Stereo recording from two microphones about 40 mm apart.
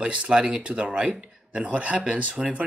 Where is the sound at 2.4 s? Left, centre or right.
Right.